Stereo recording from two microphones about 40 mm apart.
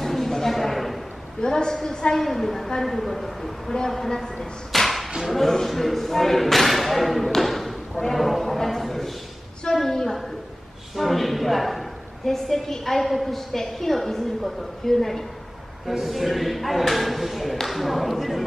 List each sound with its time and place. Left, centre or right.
0.0 s a sound: centre
1.4 s a woman's voice: centre
2.1 s a woman's voice: centre
15.9 s speech: centre